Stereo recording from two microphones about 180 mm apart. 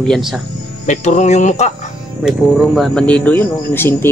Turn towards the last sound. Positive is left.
turn(degrees=10)  # may be behind; listen again after turning